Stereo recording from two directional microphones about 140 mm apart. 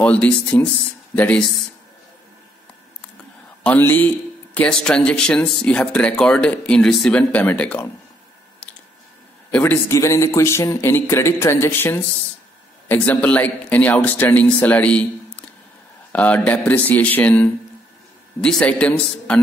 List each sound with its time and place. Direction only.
0.0 s speech: 10° left (ahead or behind)
3.6 s speech: 10° left (ahead or behind)
9.5 s speech: 15° left (ahead or behind)
16.1 s speech: 10° left (ahead or behind)